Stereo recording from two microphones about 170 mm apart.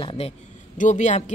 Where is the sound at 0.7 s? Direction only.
45° left (ahead or behind).